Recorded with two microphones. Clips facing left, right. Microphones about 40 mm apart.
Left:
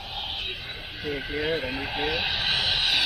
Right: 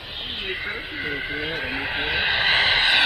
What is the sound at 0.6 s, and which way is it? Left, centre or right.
Vehicle, right.